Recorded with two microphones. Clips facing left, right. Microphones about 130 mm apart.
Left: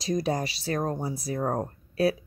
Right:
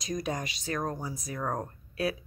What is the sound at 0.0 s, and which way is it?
Speech, 30° left (ahead or behind).